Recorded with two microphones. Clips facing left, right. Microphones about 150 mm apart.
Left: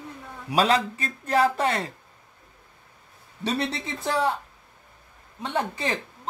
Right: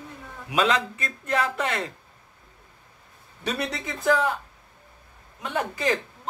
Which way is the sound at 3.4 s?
30° left (ahead or behind).